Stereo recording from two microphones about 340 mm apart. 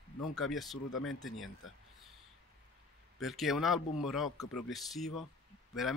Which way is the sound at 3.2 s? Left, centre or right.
Centre.